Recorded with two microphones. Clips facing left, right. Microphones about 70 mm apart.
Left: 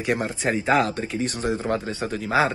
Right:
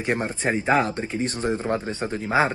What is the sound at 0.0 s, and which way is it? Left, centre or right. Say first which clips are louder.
Speech: even; right.